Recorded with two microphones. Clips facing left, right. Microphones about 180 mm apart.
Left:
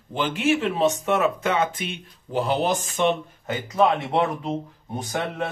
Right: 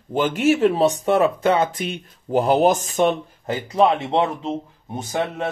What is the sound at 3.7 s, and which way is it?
Speech, 25° right (ahead or behind).